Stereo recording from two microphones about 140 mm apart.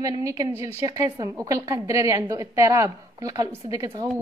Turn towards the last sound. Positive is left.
turn(degrees=-25)  # may be behind; listen again after turning